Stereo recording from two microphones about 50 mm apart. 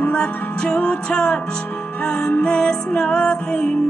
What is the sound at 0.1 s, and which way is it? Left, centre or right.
Music, left.